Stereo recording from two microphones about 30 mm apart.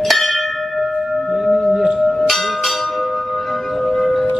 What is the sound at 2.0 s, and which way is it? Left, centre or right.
Bell, centre.